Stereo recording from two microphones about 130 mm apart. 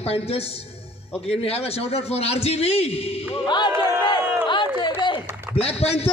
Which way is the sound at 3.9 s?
35° left (ahead or behind).